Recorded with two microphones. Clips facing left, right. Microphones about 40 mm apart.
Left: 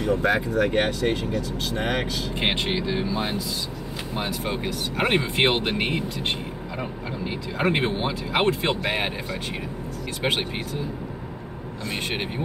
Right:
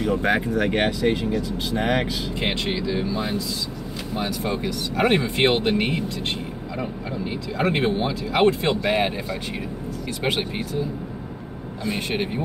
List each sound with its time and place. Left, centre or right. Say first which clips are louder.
0.0 s speech: right 1 dB; centre
2.4 s speech: left 1 dB; left; by 9.1 s centre